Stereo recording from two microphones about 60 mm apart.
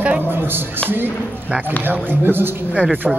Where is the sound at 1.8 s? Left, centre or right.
Right.